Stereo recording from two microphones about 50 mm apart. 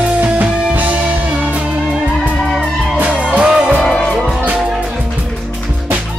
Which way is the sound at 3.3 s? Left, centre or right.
Right.